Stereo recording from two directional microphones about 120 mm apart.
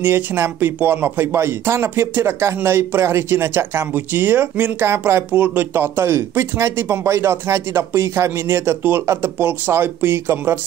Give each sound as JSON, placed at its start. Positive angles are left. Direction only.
{"t": 0.0, "sound": "speech", "side_deg": -20}